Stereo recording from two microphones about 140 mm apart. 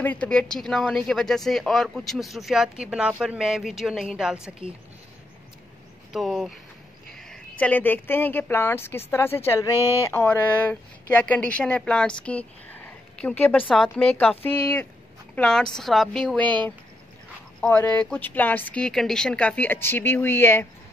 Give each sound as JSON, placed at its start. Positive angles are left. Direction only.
{"t": 0.0, "sound": "a woman's voice", "side_deg": 10}
{"t": 6.1, "sound": "a woman's voice", "side_deg": 0}
{"t": 9.8, "sound": "speech", "side_deg": -20}
{"t": 10.0, "sound": "a woman's voice", "side_deg": 15}
{"t": 17.6, "sound": "speech", "side_deg": 10}